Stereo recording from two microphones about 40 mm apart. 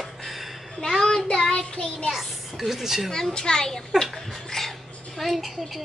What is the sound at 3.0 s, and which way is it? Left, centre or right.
Speech, centre.